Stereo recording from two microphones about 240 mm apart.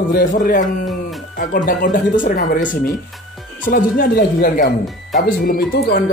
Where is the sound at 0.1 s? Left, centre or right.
Left.